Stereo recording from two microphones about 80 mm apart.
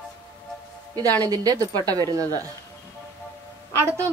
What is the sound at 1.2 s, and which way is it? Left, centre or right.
Speech, right.